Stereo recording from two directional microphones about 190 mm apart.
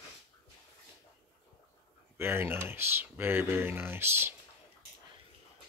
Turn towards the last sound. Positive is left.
turn(degrees=-10)  # may be behind; listen again after turning